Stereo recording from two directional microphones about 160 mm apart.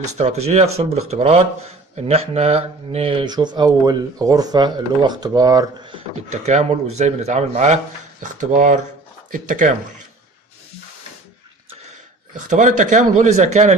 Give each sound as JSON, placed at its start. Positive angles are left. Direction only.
{"t": 0.0, "sound": "speech", "side_deg": -45}
{"t": 6.3, "sound": "speech", "side_deg": -45}
{"t": 12.4, "sound": "speech", "side_deg": -50}